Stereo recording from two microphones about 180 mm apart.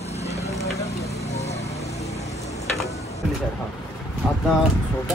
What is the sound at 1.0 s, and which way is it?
Vehicle, 35° left (ahead or behind).